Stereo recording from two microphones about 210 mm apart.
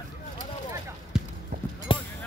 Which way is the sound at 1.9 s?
25° left (ahead or behind).